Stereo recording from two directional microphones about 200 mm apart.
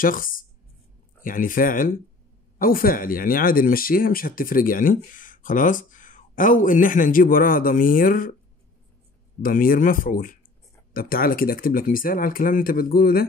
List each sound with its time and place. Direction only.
0.0 s speech: 45° left (ahead or behind)
9.4 s speech: 45° left (ahead or behind)